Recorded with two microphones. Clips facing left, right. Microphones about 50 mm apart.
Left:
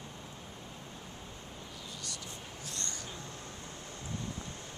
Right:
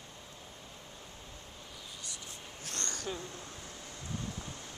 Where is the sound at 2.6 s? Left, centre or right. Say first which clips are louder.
Right 3 dB; right.